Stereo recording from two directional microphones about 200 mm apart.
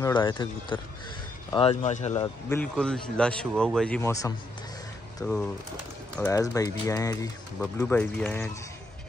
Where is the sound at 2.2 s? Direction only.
10° left (ahead or behind).